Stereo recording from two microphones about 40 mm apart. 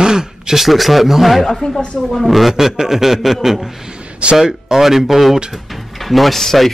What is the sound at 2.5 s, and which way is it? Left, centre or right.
A man's voice, centre.